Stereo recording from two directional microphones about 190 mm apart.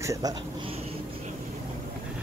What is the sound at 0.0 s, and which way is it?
Speech, 20° right (ahead or behind).